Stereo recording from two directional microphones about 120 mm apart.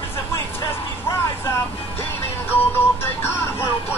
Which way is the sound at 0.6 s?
25° left (ahead or behind).